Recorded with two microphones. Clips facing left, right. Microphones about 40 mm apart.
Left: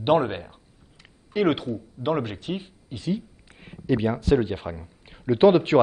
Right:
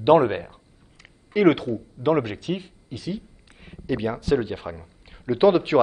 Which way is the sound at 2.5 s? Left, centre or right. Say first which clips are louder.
Right 2 dB; centre.